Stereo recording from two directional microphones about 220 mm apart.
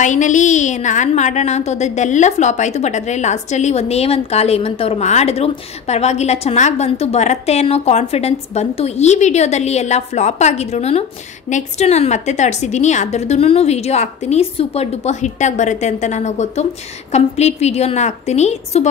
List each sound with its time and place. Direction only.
0.0 s a woman's voice: 35° left (ahead or behind)